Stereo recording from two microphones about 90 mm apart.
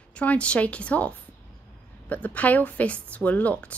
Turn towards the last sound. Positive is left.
turn(degrees=15)  # may be behind; listen again after turning